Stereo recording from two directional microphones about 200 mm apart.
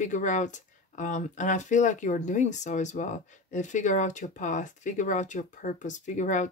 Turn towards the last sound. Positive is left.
turn(degrees=40)  # may be behind; listen again after turning